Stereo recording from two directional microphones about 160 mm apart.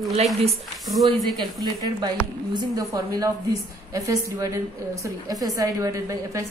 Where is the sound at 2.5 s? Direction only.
20° right (ahead or behind).